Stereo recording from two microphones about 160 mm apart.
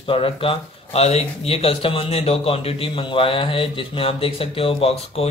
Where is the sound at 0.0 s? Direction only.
35° left (ahead or behind).